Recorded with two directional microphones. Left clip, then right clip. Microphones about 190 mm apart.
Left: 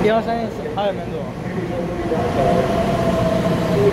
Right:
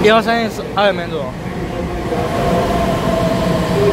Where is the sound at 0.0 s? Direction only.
15° right (ahead or behind).